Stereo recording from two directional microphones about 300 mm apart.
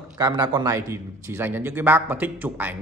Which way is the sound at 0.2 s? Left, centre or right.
Centre.